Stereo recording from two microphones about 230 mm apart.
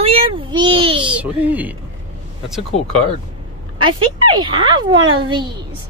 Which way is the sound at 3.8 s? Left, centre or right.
Right.